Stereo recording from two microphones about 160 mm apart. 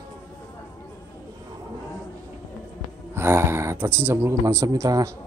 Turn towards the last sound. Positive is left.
turn(degrees=-20)  # may be behind; listen again after turning